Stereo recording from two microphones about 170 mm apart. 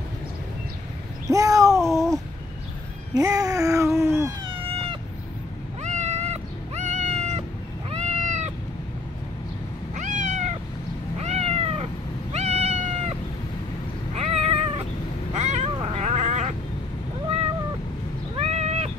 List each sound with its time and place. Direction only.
1.2 s a sound: 20° right (ahead or behind)
1.9 s babbling: 20° right (ahead or behind)
3.2 s babbling: 20° right (ahead or behind)
4.5 s cat: 35° right (ahead or behind)
9.9 s cat: 45° right (ahead or behind)
14.1 s cat: 35° right (ahead or behind)
15.3 s a sound: 45° right (ahead or behind)
18.3 s cat: 40° right (ahead or behind)